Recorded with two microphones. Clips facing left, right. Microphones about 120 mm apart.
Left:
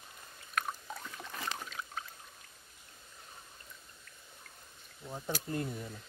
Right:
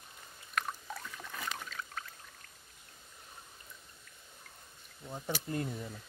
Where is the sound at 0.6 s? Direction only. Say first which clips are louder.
Even; 10° left (ahead or behind).